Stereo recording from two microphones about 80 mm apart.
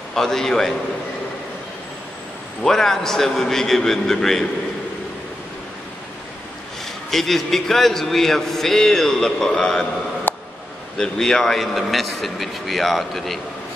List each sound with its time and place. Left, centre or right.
0.1 s a man's voice: centre
2.6 s a man's voice: centre
7.1 s a man's voice: centre
10.3 s a sound: left
11.0 s a man's voice: centre